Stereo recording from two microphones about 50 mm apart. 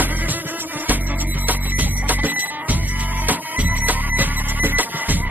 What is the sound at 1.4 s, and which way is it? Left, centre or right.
Music, right.